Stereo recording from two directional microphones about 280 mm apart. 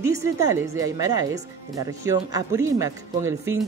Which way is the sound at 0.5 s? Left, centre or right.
Centre.